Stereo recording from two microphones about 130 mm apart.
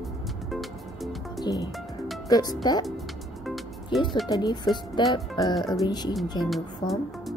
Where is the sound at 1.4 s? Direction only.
30° left (ahead or behind).